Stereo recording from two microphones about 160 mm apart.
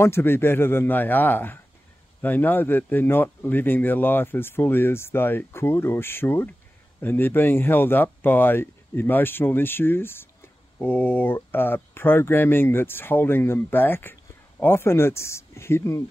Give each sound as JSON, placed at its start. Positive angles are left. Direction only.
{"t": 0.0, "sound": "speech", "side_deg": 15}